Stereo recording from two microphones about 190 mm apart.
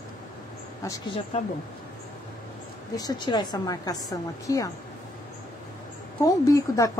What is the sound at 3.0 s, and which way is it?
A woman's voice, 20° left (ahead or behind).